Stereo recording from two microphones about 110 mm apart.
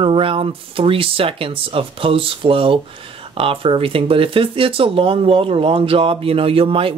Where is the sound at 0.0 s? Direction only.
55° right (ahead or behind).